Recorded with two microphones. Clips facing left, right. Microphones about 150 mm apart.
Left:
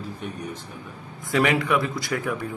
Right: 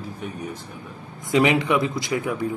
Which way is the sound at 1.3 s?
20° right (ahead or behind).